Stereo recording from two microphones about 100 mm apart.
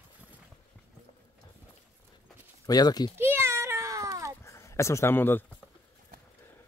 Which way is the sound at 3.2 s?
25° right (ahead or behind).